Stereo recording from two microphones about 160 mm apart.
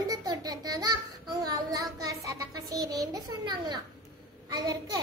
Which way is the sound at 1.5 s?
20° right (ahead or behind).